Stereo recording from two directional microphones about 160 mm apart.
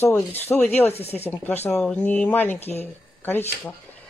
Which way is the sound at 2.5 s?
40° left (ahead or behind).